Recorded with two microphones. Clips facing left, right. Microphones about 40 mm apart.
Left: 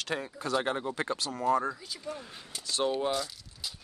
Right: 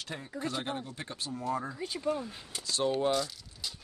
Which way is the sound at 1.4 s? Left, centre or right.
Left.